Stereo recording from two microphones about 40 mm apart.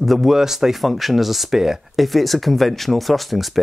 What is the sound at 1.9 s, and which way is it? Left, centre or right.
Speech, centre.